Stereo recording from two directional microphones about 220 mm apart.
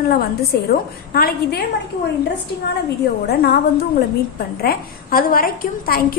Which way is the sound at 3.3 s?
45° left (ahead or behind).